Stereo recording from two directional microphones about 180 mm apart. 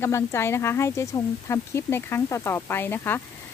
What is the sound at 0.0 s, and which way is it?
Speech, 15° left (ahead or behind).